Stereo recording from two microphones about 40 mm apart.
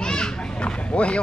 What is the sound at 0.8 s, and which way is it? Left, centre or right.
Speech, left.